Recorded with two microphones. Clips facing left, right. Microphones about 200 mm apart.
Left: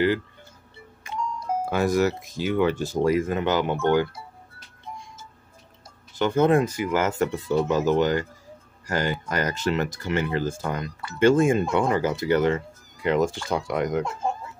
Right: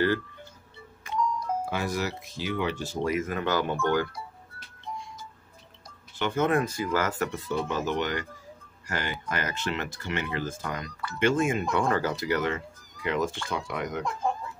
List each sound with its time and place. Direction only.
1.7 s speech: 45° left (ahead or behind)
3.1 s speech: 30° left (ahead or behind)
6.1 s speech: 35° left (ahead or behind)
6.6 s speech: 20° left (ahead or behind); by 14.0 s 40° left (ahead or behind)